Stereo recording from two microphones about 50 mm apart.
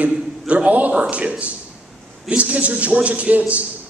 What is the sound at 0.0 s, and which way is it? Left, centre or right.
A man's voice, right.